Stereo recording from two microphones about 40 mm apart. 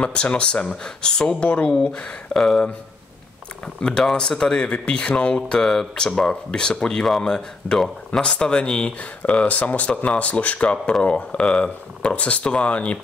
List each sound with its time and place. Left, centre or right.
0.0 s speech: left
1.3 s speech: left
2.3 s speech: centre
3.6 s speech: left
4.0 s speech: centre; by 5.6 s left
5.6 s speech: centre; by 12.9 s left